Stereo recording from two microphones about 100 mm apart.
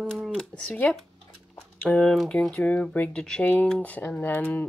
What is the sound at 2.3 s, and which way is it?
Speech, 10° left (ahead or behind).